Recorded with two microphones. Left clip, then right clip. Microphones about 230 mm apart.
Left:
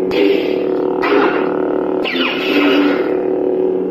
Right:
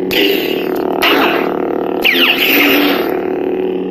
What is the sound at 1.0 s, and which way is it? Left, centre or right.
Music, right.